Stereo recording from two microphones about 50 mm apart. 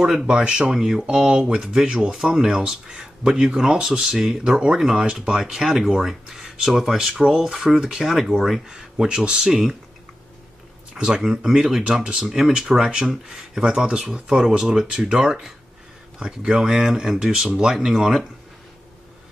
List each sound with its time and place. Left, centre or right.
0.0 s speech: centre
11.0 s speech: centre
12.0 s speech: right
12.3 s speech: centre